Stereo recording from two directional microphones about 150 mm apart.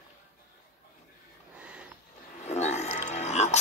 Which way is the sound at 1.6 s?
5° right (ahead or behind).